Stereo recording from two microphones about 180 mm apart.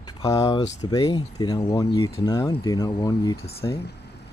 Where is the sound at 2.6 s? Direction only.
20° left (ahead or behind).